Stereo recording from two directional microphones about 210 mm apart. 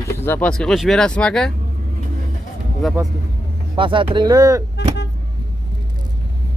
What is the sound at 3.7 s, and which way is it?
Speech, 25° right (ahead or behind).